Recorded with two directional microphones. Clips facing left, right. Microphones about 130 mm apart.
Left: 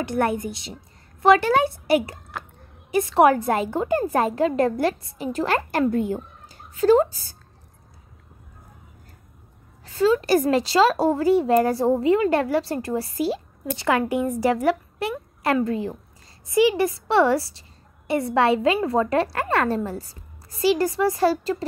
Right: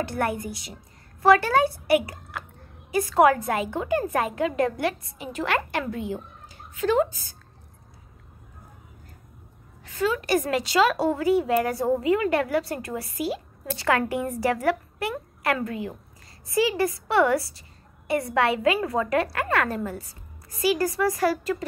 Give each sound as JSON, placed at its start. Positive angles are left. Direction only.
{"t": 0.0, "sound": "a woman's voice", "side_deg": 20}
{"t": 9.8, "sound": "a woman's voice", "side_deg": 30}
{"t": 13.7, "sound": "a woman's voice", "side_deg": 20}